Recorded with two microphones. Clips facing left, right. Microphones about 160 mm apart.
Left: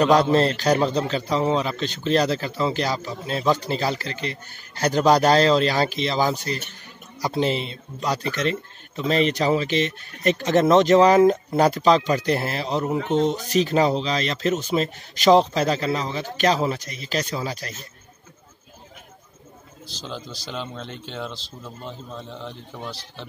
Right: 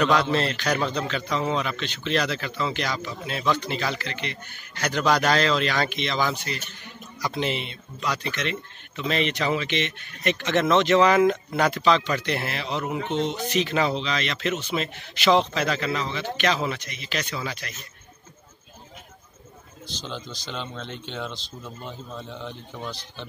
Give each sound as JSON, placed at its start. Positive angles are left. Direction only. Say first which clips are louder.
{"t": 0.0, "sound": "a man's voice", "louder": "left 5 dB", "side_deg": 40}
{"t": 19.9, "sound": "a man's voice", "louder": "left 1 dB", "side_deg": 5}